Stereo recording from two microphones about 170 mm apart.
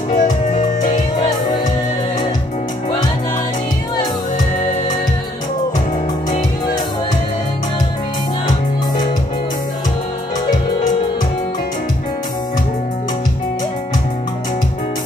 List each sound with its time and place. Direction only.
0.1 s music: 50° left (ahead or behind)